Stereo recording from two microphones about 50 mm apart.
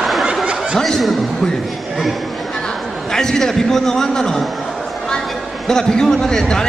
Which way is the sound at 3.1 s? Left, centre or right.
Centre.